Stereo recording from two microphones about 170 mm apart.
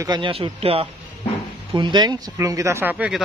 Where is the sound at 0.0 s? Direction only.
25° right (ahead or behind).